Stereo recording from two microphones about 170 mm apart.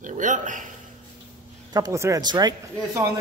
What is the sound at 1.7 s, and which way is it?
Speech, 20° right (ahead or behind).